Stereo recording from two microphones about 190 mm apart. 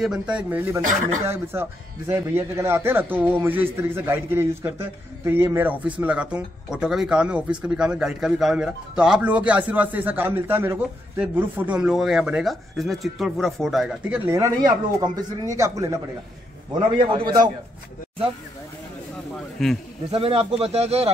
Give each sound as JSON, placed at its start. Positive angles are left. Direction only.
{"t": 0.0, "sound": "speech", "side_deg": -5}
{"t": 19.6, "sound": "speech", "side_deg": 0}
{"t": 20.1, "sound": "speech", "side_deg": -30}